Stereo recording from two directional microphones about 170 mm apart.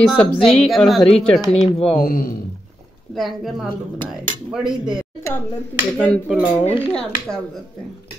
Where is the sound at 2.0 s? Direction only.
55° left (ahead or behind).